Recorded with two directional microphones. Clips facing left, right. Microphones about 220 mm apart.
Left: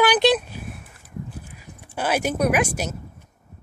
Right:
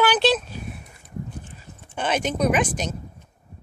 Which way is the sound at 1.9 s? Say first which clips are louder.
Left 1 dB; 5° left (ahead or behind).